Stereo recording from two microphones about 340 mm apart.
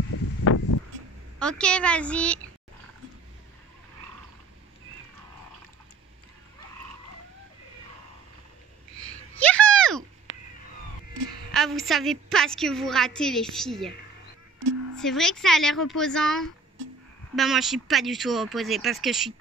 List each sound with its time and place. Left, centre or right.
0.4 s a sound: left
1.4 s a woman's voice: centre
9.0 s a sound: centre
10.3 s cat: right
11.5 s a woman's voice: centre
15.0 s a woman's voice: centre